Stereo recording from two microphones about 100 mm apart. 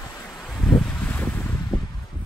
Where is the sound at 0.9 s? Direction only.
20° left (ahead or behind).